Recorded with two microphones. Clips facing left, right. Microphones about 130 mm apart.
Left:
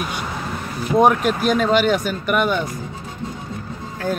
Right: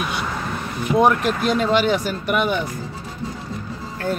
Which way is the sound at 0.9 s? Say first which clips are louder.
Left 2 dB; centre (ahead or behind).